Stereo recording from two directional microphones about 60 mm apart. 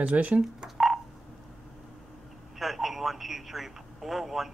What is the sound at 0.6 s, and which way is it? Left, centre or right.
Telephone dialing, centre.